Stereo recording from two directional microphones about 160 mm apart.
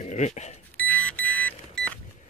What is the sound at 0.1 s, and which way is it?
Speech, 45° left (ahead or behind).